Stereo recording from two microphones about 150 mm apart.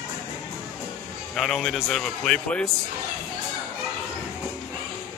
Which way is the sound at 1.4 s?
Centre (ahead or behind).